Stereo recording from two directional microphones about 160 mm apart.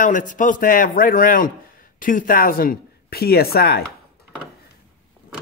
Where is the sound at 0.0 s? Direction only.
55° left (ahead or behind); by 3.8 s 75° left (ahead or behind).